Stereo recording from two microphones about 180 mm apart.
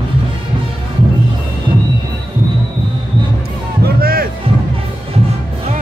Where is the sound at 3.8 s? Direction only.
55° right (ahead or behind).